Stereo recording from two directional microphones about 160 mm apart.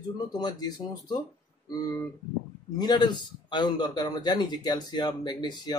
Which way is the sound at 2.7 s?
25° left (ahead or behind).